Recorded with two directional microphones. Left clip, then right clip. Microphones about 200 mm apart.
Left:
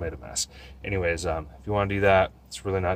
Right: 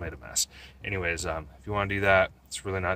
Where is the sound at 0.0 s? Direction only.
10° right (ahead or behind).